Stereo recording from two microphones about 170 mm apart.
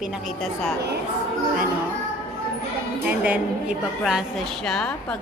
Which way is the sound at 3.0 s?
10° right (ahead or behind).